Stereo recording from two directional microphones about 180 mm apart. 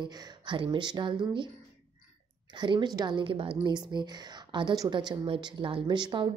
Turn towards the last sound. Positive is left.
turn(degrees=-25)  # may be behind; listen again after turning